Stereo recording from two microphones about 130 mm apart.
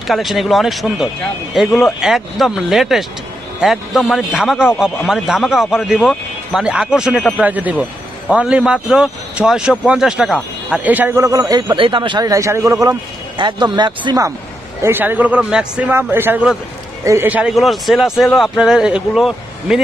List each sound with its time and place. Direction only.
0.0 s a man's voice: centre (ahead or behind); by 11.7 s 25° right (ahead or behind)
11.7 s speech: 40° right (ahead or behind)
12.3 s a man's voice: 20° right (ahead or behind)
13.4 s speech: 35° right (ahead or behind)
14.8 s a man's voice: 15° right (ahead or behind)
17.3 s a man's voice: 10° right (ahead or behind)